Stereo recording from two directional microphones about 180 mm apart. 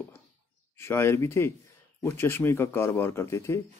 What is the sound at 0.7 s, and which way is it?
A man's voice, 15° left (ahead or behind).